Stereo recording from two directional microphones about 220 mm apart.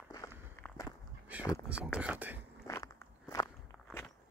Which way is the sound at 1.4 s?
15° left (ahead or behind).